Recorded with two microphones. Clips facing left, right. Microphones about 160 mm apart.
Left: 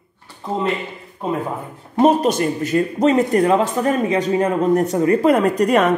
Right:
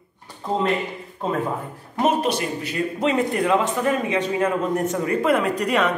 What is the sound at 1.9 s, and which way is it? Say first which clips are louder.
A man's voice: left 6 dB; 35° left (ahead or behind).